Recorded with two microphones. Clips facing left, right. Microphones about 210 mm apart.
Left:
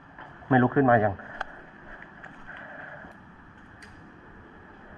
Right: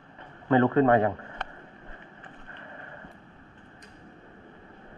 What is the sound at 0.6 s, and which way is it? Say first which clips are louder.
Speech: even; 35° right (ahead or behind).